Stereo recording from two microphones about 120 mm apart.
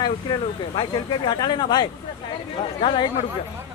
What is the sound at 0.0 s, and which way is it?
Speech, 40° left (ahead or behind).